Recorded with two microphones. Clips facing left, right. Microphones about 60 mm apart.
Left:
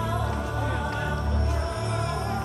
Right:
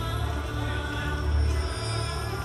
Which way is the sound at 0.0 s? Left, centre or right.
Centre.